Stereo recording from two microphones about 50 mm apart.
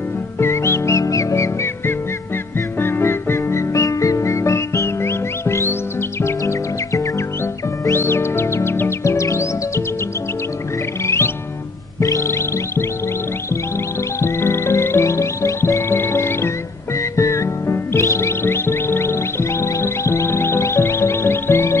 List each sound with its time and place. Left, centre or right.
0.4 s music: left
2.8 s music: left
6.2 s music: left
7.9 s music: left
11.1 s music: left
12.0 s music: left
14.2 s music: left
17.2 s music: left